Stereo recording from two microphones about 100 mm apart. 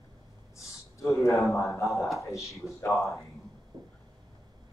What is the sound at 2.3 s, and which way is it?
Speech, 30° left (ahead or behind).